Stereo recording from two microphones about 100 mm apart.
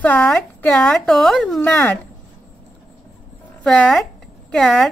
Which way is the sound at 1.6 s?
15° left (ahead or behind).